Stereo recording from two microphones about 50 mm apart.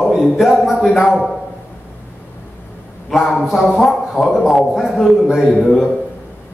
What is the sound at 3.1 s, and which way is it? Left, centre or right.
Speech, centre.